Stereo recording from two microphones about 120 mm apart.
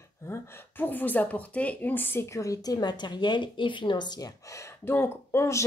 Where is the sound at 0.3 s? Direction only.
15° left (ahead or behind).